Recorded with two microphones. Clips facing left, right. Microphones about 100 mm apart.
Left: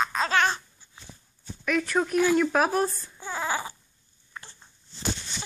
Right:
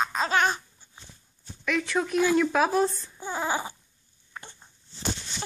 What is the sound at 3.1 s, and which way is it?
Speech, 20° right (ahead or behind).